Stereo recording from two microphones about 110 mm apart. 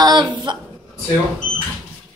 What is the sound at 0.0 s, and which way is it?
Speech, 40° right (ahead or behind).